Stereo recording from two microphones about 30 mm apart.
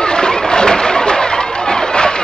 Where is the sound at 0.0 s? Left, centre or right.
Left.